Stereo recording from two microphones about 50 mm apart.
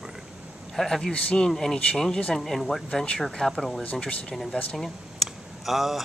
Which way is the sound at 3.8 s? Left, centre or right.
Left.